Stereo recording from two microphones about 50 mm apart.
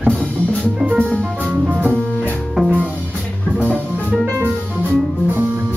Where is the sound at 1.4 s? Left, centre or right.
Right.